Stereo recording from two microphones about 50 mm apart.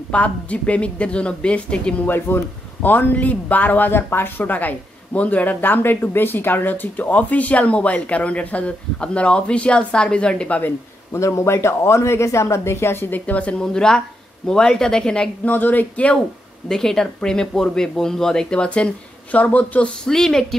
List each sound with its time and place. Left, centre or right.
0.1 s a woman's voice: left
2.0 s a man's voice: left
11.1 s speech: left
13.3 s a woman's voice: left
13.6 s speech: centre
15.4 s a man's voice: left
16.6 s a man's voice: centre; by 19.9 s left
20.1 s speech: centre